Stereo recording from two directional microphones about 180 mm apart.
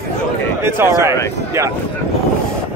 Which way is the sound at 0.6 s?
15° right (ahead or behind).